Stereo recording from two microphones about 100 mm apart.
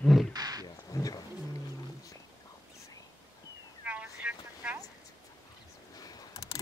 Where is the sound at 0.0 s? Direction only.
Centre (ahead or behind).